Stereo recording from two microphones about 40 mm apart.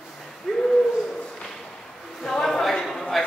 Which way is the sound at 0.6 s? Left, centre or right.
Centre.